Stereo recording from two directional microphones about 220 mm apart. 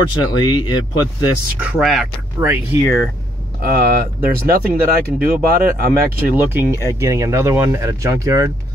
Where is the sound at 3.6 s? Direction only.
40° right (ahead or behind).